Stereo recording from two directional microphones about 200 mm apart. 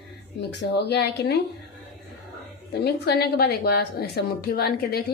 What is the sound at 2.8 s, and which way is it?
A woman's voice, 55° left (ahead or behind).